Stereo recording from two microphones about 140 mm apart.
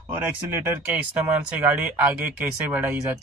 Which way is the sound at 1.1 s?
10° right (ahead or behind).